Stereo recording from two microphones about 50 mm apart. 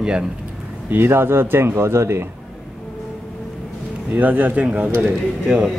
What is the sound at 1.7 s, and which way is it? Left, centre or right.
Speech, right.